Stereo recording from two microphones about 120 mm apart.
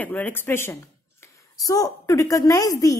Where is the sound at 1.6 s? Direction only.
30° left (ahead or behind).